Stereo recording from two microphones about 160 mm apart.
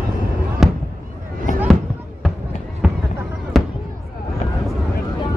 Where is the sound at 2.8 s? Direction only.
5° right (ahead or behind).